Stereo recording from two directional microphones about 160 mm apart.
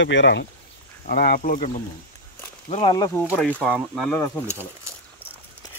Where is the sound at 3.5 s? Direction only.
5° right (ahead or behind).